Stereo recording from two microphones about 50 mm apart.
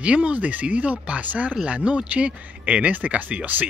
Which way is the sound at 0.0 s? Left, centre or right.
Right.